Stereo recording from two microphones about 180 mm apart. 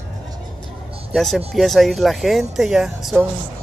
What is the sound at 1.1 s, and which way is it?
Speech, centre (ahead or behind).